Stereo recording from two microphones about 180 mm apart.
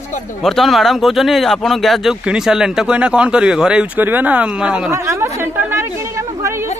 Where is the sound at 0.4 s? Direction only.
Centre (ahead or behind).